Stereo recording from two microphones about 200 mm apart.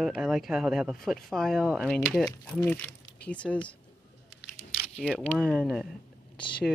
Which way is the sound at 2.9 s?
50° left (ahead or behind).